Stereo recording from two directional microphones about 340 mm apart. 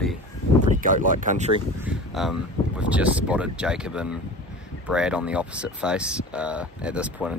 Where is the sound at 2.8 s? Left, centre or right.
Centre.